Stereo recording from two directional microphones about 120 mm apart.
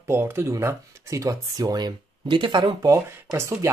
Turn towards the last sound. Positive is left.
turn(degrees=-25)  # may be behind; listen again after turning